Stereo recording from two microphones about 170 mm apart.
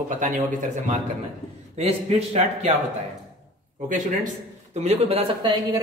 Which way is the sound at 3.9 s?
45° right (ahead or behind).